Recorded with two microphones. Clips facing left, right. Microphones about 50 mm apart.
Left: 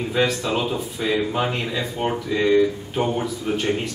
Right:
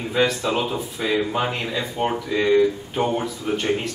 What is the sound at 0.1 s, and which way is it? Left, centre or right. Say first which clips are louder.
A man's voice: right 2 dB; centre.